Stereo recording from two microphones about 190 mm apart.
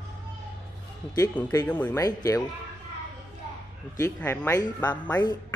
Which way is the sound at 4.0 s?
10° left (ahead or behind).